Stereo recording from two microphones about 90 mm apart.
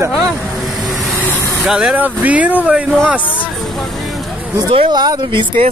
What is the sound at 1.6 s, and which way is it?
Speech, 10° right (ahead or behind).